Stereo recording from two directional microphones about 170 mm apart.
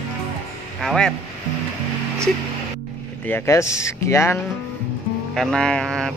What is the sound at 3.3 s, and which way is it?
Speech, 15° left (ahead or behind).